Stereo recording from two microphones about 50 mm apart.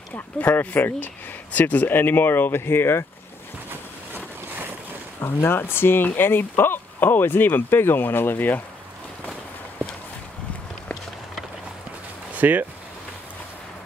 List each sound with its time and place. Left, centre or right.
0.4 s speech: left
5.2 s speech: left
12.4 s speech: right